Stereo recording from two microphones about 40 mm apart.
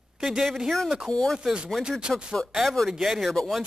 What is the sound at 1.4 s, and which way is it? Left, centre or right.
Speech, right.